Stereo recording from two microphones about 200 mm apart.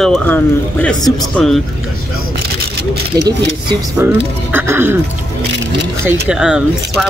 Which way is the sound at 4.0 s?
10° right (ahead or behind).